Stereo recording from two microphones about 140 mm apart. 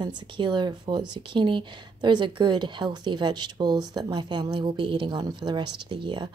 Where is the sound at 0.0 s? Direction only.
30° right (ahead or behind).